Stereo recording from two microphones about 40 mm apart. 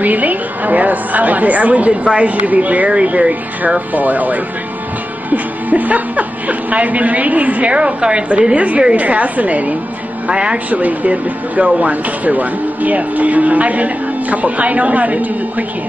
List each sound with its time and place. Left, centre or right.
0.0 s a woman's voice: right
3.9 s a woman's voice: right
10.2 s speech: right
10.7 s speech: right